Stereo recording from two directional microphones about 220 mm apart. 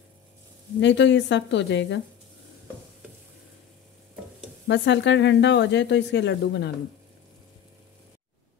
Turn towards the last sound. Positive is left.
turn(degrees=50)  # may be behind; listen again after turning